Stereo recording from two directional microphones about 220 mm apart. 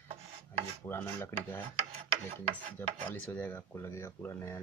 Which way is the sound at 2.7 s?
10° left (ahead or behind).